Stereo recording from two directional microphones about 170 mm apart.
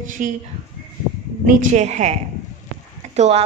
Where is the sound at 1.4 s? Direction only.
45° right (ahead or behind).